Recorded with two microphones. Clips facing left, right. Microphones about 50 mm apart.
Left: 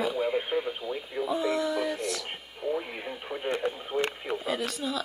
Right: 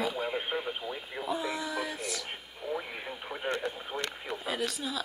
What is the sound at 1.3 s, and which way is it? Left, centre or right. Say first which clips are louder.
Speech: left 5 dB; centre.